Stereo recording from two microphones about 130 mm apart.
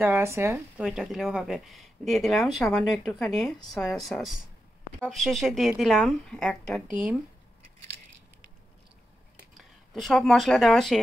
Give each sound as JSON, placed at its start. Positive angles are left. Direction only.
{"t": 0.0, "sound": "speech", "side_deg": -20}
{"t": 0.7, "sound": "speech", "side_deg": -5}
{"t": 6.9, "sound": "speech", "side_deg": -10}
{"t": 9.5, "sound": "speech", "side_deg": 0}